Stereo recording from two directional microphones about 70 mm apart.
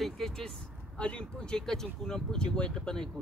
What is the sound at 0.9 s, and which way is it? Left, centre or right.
Speech, centre.